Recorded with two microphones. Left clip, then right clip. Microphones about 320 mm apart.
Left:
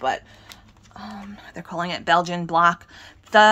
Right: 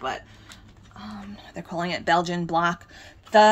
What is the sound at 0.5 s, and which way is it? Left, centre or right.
Speech, centre.